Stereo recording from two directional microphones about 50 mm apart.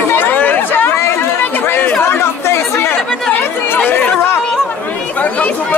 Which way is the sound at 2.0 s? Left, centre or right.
Left.